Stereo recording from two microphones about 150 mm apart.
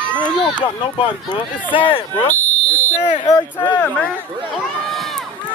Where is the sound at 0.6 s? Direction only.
35° left (ahead or behind).